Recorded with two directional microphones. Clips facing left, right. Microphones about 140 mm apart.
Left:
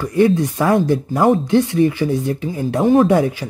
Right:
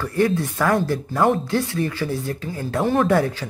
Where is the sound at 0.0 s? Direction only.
15° left (ahead or behind).